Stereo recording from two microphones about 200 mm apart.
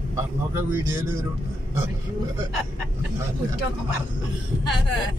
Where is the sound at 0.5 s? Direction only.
15° right (ahead or behind).